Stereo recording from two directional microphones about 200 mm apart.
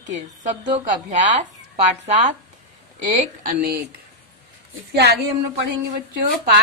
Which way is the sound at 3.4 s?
45° right (ahead or behind).